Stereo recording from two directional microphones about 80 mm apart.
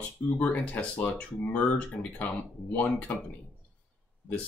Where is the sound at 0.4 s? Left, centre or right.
Centre.